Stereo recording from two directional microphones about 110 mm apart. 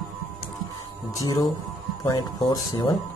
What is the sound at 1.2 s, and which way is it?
A man's voice, 30° left (ahead or behind).